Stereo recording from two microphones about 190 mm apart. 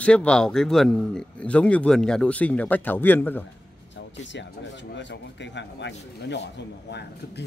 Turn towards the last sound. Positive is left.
turn(degrees=60)  # may be behind; listen again after turning